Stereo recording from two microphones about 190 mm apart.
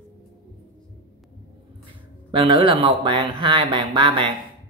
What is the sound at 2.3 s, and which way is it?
Speech, 25° right (ahead or behind).